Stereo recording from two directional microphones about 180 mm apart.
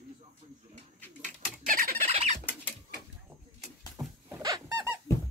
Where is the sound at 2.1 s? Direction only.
35° right (ahead or behind).